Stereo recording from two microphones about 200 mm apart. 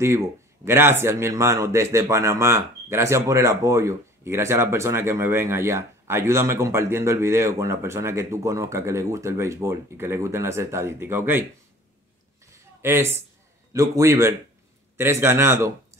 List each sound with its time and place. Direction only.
0.7 s speech: 10° right (ahead or behind)
12.4 s a sound: 15° right (ahead or behind)
13.7 s speech: 15° right (ahead or behind)